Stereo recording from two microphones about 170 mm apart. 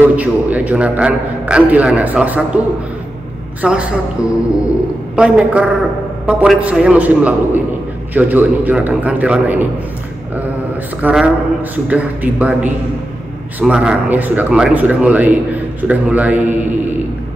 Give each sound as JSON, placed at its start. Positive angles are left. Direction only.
{"t": 0.0, "sound": "speech", "side_deg": -10}
{"t": 3.6, "sound": "a woman's voice", "side_deg": -5}
{"t": 11.0, "sound": "speech", "side_deg": -10}